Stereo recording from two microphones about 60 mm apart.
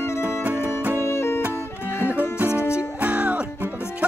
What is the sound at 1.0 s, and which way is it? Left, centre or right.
Music, left.